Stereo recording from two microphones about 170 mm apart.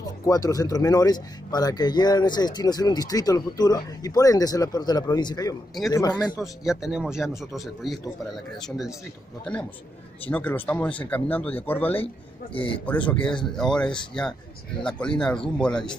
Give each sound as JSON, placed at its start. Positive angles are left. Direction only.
{"t": 0.0, "sound": "speech", "side_deg": 20}
{"t": 6.4, "sound": "speech", "side_deg": -5}